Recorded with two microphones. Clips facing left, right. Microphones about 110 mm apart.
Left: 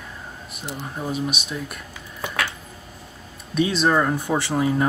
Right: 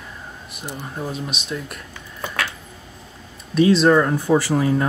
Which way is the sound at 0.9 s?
Centre (ahead or behind).